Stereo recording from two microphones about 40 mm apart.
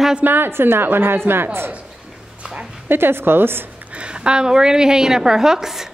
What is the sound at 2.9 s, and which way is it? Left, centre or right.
Speech, right.